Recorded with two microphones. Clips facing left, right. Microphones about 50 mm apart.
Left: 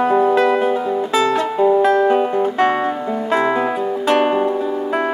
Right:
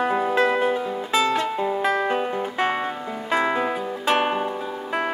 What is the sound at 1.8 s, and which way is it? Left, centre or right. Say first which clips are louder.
Music: left 8 dB; centre.